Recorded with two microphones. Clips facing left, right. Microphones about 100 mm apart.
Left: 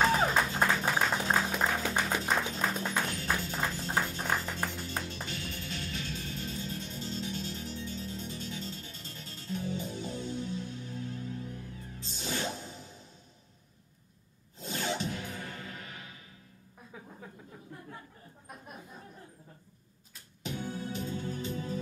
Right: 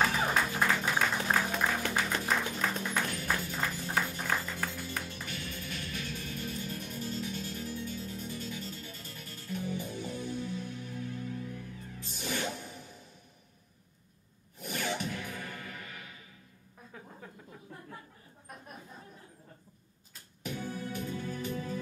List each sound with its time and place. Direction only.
0.2 s music: 20° left (ahead or behind)
14.6 s music: 25° left (ahead or behind)
16.9 s a sound: 10° left (ahead or behind)
20.4 s music: 20° left (ahead or behind)